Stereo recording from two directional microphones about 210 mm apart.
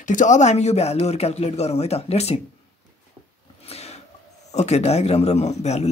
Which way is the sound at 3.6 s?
30° left (ahead or behind).